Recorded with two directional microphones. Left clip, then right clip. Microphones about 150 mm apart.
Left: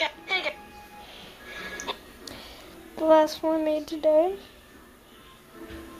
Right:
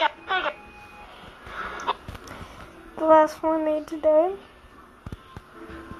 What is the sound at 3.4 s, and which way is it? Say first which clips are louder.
Speech: right 2 dB; 30° left (ahead or behind).